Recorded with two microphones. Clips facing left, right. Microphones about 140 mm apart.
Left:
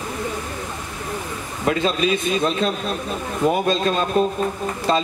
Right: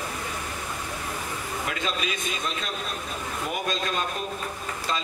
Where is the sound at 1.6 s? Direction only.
35° left (ahead or behind).